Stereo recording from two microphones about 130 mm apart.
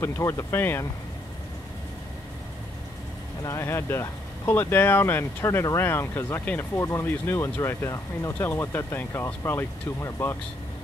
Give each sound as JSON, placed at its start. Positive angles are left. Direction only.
{"t": 0.0, "sound": "speech", "side_deg": 20}
{"t": 3.4, "sound": "speech", "side_deg": 20}